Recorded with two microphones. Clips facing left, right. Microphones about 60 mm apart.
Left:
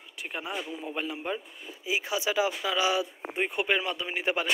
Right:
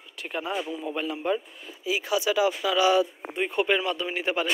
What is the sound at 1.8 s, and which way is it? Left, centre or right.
Speech, left.